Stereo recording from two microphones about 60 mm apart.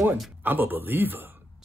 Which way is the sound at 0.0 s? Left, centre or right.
Right.